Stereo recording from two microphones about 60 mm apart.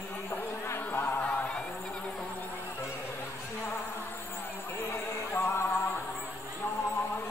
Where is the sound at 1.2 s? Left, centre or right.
Left.